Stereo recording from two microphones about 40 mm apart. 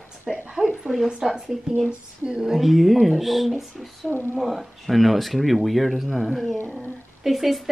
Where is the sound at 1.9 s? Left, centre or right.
Right.